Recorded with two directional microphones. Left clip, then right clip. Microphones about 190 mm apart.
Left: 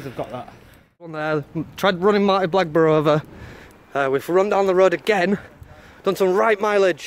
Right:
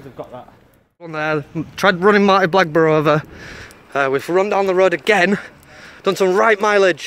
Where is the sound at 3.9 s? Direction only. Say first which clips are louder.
Right 2 dB; 15° left (ahead or behind).